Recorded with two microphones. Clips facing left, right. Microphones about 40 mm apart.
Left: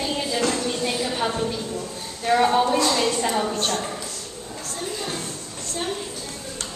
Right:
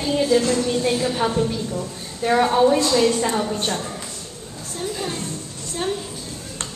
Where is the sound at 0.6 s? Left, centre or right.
Centre.